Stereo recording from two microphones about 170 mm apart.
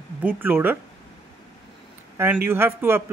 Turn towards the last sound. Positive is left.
turn(degrees=-15)  # may be behind; listen again after turning